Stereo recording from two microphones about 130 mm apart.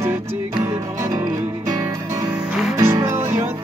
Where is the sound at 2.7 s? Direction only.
20° right (ahead or behind).